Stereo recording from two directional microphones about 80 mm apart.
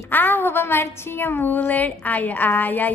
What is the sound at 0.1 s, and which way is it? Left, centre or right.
A woman's voice, left.